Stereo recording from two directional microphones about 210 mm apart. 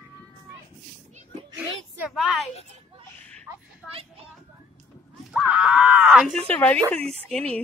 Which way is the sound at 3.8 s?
Centre (ahead or behind).